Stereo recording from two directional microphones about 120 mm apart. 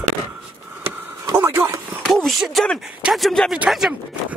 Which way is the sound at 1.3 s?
20° right (ahead or behind).